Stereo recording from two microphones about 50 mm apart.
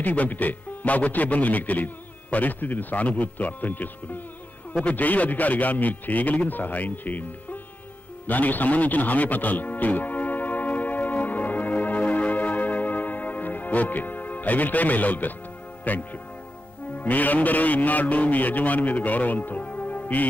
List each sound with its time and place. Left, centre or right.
0.0 s a man's voice: left
8.3 s music: left
15.8 s a man's voice: left